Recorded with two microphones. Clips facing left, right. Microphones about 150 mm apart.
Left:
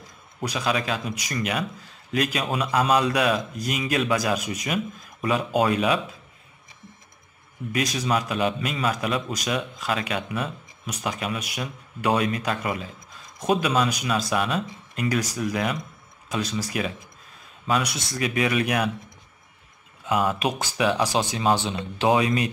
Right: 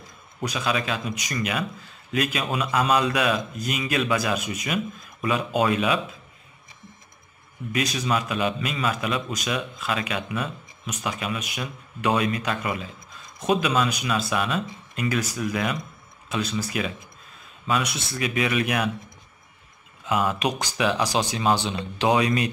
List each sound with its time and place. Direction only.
0.4 s a man's voice: 35° left (ahead or behind)
7.9 s a man's voice: 35° left (ahead or behind)
20.1 s a man's voice: 35° left (ahead or behind)